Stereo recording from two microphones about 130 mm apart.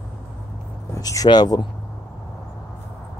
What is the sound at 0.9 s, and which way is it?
Speech, 25° left (ahead or behind).